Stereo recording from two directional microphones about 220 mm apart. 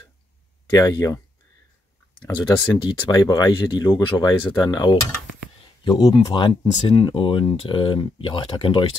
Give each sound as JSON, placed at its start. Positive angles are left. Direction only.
{"t": 0.7, "sound": "speech", "side_deg": 15}
{"t": 2.2, "sound": "speech", "side_deg": 15}